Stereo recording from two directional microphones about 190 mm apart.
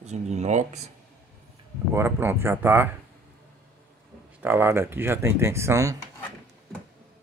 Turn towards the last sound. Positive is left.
turn(degrees=-15)  # may be behind; listen again after turning